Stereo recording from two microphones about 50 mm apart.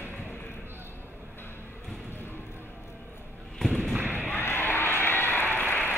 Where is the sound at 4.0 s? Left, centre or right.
Right.